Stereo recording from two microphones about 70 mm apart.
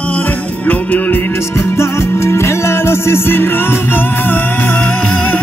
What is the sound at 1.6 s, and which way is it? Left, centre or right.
Music, left.